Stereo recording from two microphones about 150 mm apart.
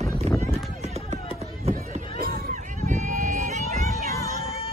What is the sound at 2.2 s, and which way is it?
Run, 90° right.